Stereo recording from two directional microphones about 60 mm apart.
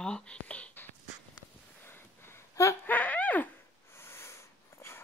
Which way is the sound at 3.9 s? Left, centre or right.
Left.